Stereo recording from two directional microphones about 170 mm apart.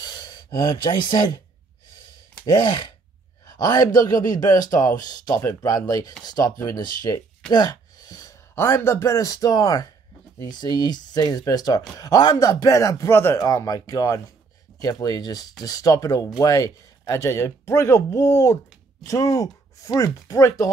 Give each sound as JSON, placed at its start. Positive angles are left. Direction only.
{"t": 0.0, "sound": "speech", "side_deg": 25}
{"t": 2.4, "sound": "speech", "side_deg": 25}
{"t": 7.5, "sound": "speech", "side_deg": 25}